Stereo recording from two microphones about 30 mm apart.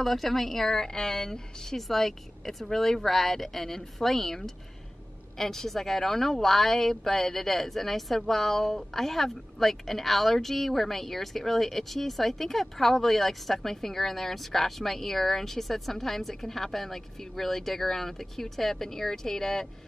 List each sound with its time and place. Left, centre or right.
0.0 s speech: centre
1.8 s speech: centre